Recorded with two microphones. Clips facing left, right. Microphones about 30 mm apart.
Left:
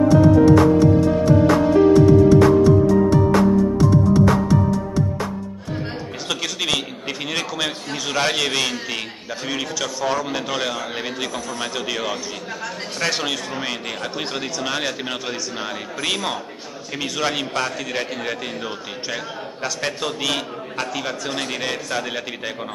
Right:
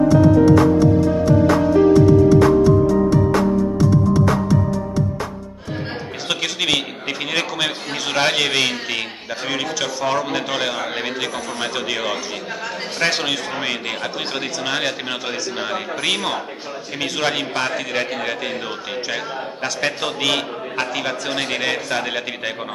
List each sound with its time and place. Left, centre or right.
6.2 s a man's voice: centre